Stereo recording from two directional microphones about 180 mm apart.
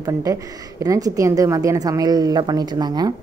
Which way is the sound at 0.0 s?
20° right (ahead or behind).